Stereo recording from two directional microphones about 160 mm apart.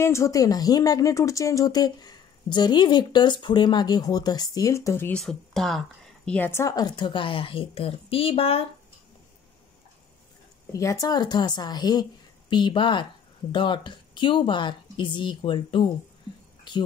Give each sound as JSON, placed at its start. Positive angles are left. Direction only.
{"t": 0.0, "sound": "speech", "side_deg": 20}
{"t": 5.2, "sound": "speech", "side_deg": 0}
{"t": 10.7, "sound": "speech", "side_deg": 20}